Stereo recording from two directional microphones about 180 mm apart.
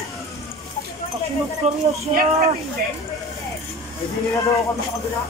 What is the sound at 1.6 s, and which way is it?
Speech, 40° right (ahead or behind).